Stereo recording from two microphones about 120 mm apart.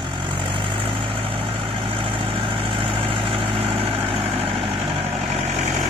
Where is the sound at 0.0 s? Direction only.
45° right (ahead or behind); by 5.7 s 60° right (ahead or behind).